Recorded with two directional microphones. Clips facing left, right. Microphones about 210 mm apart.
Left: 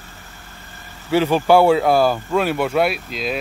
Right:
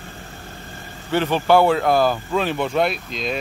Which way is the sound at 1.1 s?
10° left (ahead or behind).